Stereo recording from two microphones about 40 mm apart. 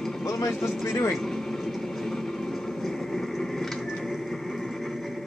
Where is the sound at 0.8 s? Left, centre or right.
Left.